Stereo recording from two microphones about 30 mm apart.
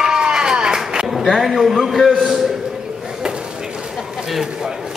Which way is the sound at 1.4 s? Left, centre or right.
Centre.